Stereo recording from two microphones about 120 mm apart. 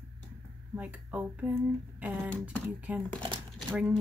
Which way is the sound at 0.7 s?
10° right (ahead or behind).